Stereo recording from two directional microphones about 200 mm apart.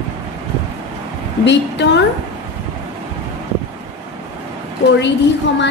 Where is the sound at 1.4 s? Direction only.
60° left (ahead or behind).